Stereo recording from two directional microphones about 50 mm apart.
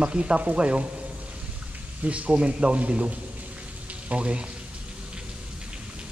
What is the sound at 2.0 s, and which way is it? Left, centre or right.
A man's voice, right.